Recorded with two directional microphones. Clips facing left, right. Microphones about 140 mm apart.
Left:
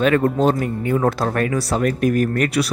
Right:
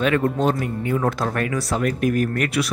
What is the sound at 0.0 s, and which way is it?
Speech, 40° left (ahead or behind).